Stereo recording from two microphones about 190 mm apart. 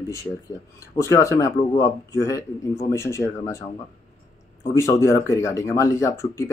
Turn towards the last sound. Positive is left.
turn(degrees=15)  # may be behind; listen again after turning